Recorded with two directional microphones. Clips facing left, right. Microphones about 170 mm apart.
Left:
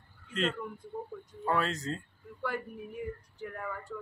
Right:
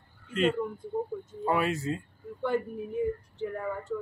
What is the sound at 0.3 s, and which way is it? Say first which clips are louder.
Speech: right 6 dB; 5° right (ahead or behind).